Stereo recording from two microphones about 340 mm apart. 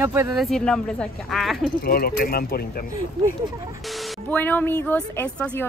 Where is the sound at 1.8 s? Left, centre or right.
Left.